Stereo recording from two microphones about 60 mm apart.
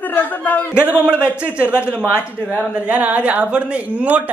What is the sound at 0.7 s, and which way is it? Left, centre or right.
Speech, right.